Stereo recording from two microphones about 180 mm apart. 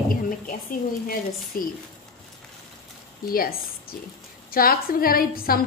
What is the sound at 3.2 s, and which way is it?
A woman's voice, 55° left (ahead or behind).